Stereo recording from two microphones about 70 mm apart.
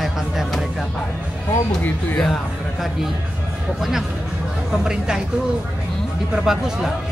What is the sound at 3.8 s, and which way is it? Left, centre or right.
A man's voice, centre.